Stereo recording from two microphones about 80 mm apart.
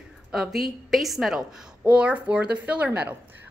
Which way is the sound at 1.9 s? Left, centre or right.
Centre.